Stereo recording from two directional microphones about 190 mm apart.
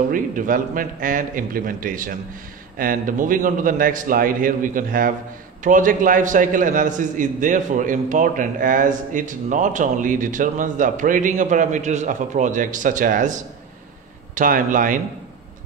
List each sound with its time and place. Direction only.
0.1 s a man's voice: 45° right (ahead or behind)